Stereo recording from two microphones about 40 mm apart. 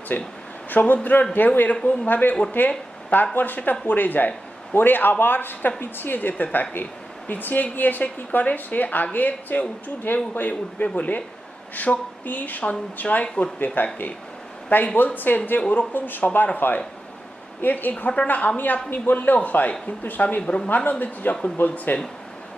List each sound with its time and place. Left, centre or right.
0.1 s speech: left
2.6 s speech: left
13.8 s speech: left
18.6 s speech: left
20.7 s speech: left